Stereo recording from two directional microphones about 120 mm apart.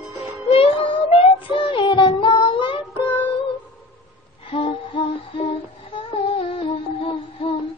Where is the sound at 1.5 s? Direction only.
45° left (ahead or behind).